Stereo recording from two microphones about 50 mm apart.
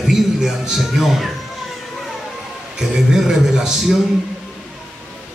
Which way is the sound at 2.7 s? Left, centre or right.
Centre.